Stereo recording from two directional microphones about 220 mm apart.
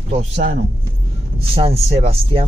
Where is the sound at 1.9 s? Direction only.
25° right (ahead or behind).